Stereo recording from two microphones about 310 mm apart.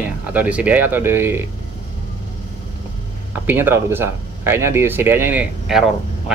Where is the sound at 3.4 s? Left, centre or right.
Centre.